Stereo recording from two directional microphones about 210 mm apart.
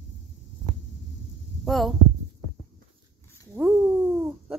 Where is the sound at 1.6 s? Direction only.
Centre (ahead or behind).